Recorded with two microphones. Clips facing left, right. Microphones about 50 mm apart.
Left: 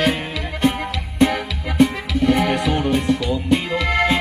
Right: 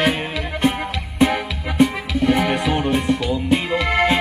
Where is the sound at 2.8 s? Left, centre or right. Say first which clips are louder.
Even; centre.